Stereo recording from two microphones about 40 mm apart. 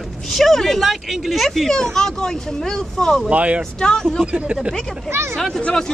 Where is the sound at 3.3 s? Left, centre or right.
Right.